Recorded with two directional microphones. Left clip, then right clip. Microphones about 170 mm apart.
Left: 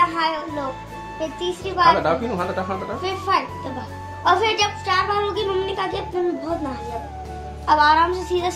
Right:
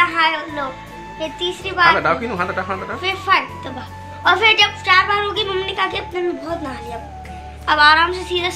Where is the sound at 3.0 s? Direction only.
20° left (ahead or behind).